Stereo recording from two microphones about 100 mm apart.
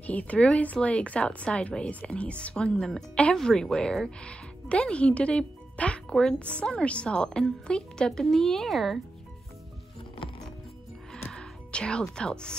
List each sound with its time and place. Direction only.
0.0 s a woman's voice: 15° left (ahead or behind)
11.3 s speech: 10° left (ahead or behind)